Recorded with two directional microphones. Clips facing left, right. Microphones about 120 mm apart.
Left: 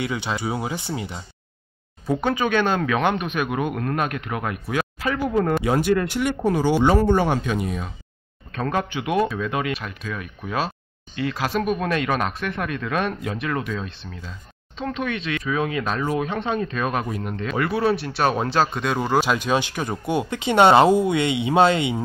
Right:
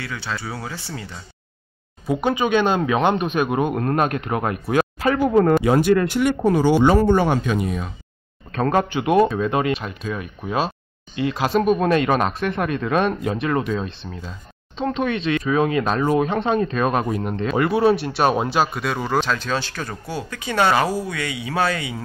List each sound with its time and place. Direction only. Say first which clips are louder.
0.0 s speech: left 4 dB; 20° left (ahead or behind)
2.0 s speech: right 2 dB; 15° right (ahead or behind); by 5.5 s 50° right (ahead or behind)
5.6 s speech: right 4 dB; 90° right
8.5 s speech: right 5 dB; 45° right (ahead or behind)
17.6 s speech: right 4 dB; 20° right (ahead or behind); by 22.0 s 25° left (ahead or behind)